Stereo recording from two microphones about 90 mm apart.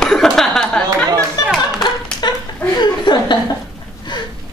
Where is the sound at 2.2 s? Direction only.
55° left (ahead or behind).